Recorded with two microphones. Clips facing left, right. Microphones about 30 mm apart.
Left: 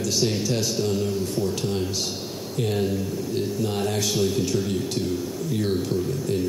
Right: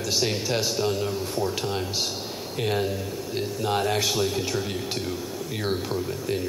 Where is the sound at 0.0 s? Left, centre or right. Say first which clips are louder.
Left 2 dB; centre.